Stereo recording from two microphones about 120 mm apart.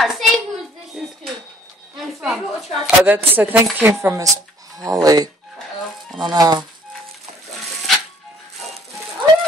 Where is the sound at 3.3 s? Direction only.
15° right (ahead or behind).